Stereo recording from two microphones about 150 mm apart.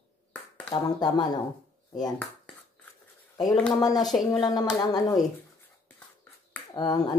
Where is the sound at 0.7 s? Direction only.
25° left (ahead or behind).